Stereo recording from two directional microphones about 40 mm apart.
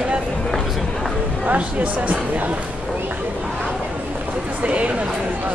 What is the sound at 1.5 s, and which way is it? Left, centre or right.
Speech, right.